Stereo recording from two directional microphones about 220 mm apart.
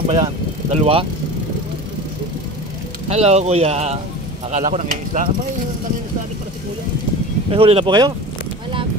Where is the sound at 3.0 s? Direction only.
30° right (ahead or behind).